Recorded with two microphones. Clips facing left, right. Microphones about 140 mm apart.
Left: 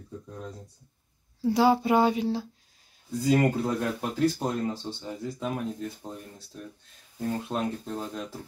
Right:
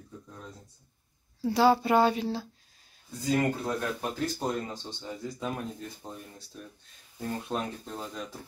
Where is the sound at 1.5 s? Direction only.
15° left (ahead or behind).